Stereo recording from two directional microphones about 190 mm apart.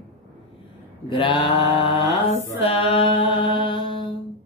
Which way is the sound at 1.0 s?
25° left (ahead or behind).